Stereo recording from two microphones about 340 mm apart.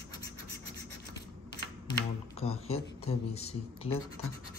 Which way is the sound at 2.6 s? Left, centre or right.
Centre.